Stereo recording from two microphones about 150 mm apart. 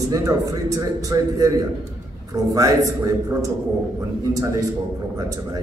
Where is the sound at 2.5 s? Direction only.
25° right (ahead or behind).